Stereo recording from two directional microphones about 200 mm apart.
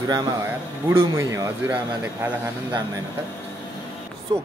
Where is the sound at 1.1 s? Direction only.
15° right (ahead or behind).